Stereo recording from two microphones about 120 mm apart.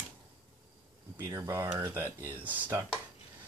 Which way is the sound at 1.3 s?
25° right (ahead or behind).